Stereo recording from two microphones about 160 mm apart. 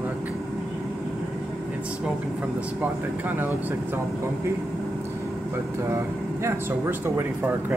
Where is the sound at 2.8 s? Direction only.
10° right (ahead or behind).